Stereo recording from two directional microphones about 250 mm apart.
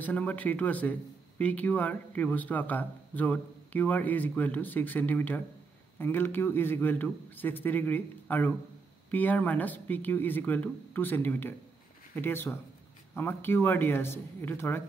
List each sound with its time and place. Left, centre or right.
0.0 s speech: centre